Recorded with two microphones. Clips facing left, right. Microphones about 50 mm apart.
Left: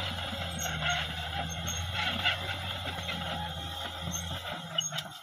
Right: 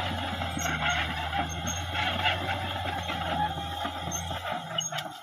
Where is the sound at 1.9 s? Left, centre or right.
Right.